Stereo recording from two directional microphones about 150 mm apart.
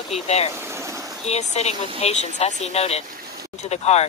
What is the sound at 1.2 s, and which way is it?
Speech, 45° left (ahead or behind).